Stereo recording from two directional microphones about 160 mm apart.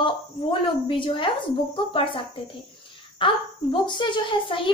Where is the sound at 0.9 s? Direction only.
30° left (ahead or behind).